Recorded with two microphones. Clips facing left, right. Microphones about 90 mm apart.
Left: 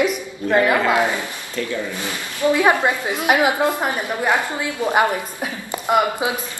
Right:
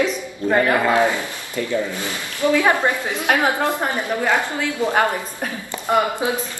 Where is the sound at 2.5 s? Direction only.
20° left (ahead or behind).